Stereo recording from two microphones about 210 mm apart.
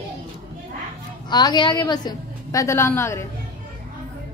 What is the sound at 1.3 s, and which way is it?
A woman's voice, 20° left (ahead or behind).